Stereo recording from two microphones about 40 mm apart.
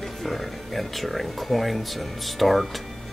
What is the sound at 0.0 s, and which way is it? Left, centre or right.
Speech, centre.